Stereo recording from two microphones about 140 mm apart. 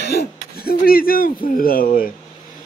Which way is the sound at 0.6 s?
90° left.